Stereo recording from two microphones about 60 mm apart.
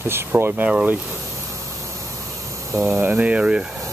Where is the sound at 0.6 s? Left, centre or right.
Centre.